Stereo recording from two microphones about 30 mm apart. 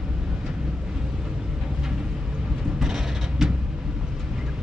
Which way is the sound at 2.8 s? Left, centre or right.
Centre.